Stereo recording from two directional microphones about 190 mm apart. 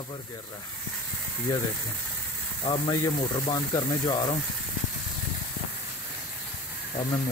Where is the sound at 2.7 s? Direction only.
25° left (ahead or behind).